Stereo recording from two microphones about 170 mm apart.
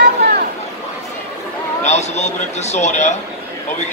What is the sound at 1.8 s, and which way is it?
Speech, 40° left (ahead or behind).